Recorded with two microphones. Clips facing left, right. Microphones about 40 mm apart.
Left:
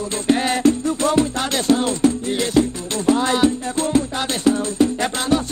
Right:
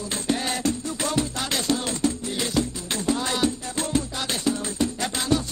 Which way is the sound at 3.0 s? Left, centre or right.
Left.